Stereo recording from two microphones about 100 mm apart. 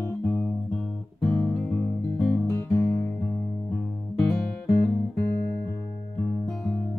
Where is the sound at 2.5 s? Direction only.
30° left (ahead or behind).